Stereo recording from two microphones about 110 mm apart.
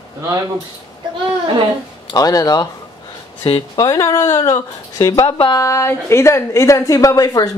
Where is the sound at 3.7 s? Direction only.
30° left (ahead or behind).